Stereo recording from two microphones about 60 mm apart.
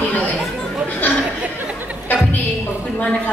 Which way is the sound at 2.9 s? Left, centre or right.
Left.